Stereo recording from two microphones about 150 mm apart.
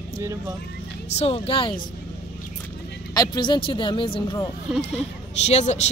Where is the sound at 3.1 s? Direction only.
25° left (ahead or behind).